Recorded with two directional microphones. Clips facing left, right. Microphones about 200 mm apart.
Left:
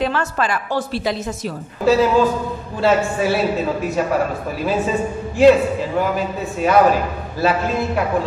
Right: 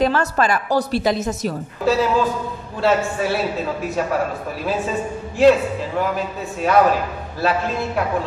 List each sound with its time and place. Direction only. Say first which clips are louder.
0.0 s a woman's voice: right 2 dB; 40° right (ahead or behind)
1.9 s a man's voice: left 4 dB; centre (ahead or behind)